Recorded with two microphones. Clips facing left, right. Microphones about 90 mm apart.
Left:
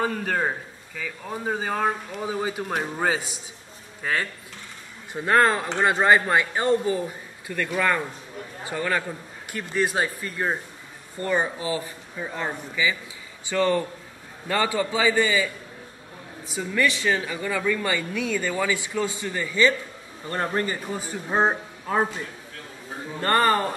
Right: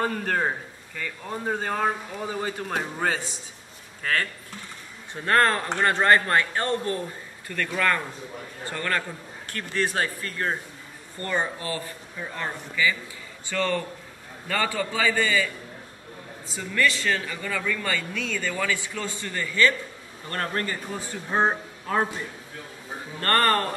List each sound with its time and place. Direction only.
0.0 s a man's voice: centre (ahead or behind)
23.2 s speech: 10° left (ahead or behind)